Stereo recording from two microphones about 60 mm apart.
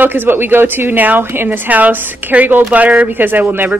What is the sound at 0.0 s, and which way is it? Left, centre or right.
A woman's voice, right.